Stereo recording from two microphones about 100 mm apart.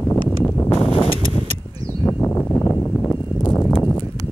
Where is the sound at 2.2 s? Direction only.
20° left (ahead or behind).